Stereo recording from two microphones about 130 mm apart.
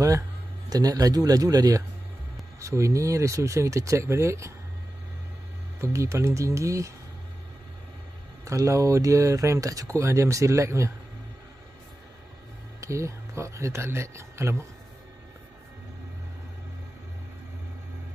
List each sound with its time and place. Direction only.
0.7 s speech: 30° right (ahead or behind)
5.8 s speech: 20° right (ahead or behind)
8.5 s speech: 25° right (ahead or behind)
12.8 s speech: 25° right (ahead or behind)